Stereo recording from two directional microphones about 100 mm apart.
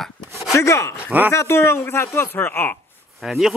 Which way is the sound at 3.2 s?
Centre (ahead or behind).